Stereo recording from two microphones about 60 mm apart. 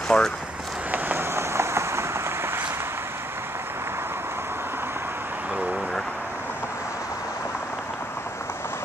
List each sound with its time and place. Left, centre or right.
0.1 s speech: centre
0.9 s vehicle: right
1.3 s a sound: right